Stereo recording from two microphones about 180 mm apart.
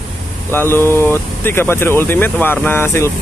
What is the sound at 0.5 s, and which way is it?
Speech, 15° left (ahead or behind).